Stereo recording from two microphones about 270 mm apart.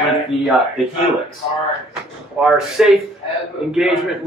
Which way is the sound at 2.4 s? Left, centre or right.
Centre.